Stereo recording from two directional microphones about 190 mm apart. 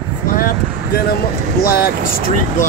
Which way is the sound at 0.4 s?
50° left (ahead or behind).